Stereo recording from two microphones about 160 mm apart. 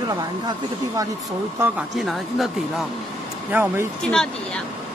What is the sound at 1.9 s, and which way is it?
Speech, centre (ahead or behind).